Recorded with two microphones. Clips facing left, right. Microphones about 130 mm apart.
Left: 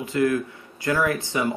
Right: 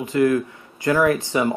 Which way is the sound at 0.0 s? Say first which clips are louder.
Right 4 dB; 20° right (ahead or behind).